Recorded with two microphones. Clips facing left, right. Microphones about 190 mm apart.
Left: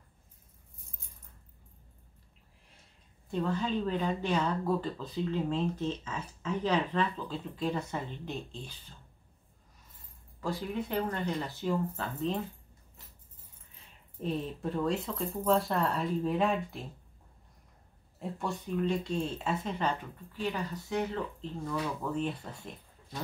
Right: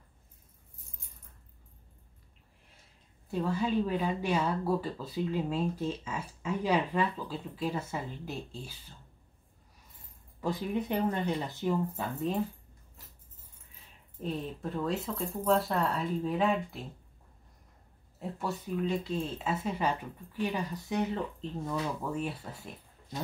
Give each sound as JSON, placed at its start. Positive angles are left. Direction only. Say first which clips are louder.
{"t": 3.3, "sound": "speech", "louder": "right 1 dB", "side_deg": -5}
{"t": 10.4, "sound": "speech", "louder": "right 2 dB", "side_deg": -20}
{"t": 14.2, "sound": "speech", "louder": "left 2 dB", "side_deg": 0}
{"t": 18.2, "sound": "speech", "louder": "even", "side_deg": 0}
{"t": 22.1, "sound": "speech", "louder": "left 1 dB", "side_deg": -5}